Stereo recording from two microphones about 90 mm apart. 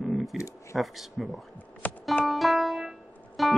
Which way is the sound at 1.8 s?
20° left (ahead or behind).